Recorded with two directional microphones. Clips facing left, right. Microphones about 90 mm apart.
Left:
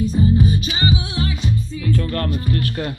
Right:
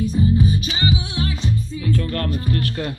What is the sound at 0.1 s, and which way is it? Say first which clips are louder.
Music: left 1 dB; 45° left (ahead or behind).